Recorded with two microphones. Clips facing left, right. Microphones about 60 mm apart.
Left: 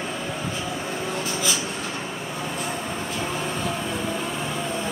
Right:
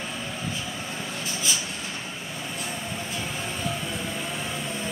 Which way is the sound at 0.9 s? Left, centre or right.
Left.